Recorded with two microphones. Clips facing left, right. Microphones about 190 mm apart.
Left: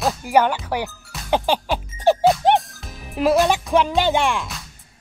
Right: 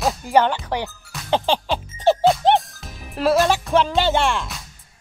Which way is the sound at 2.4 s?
10° left (ahead or behind).